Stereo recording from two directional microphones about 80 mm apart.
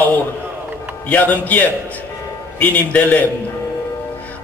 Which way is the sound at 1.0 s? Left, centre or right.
Centre.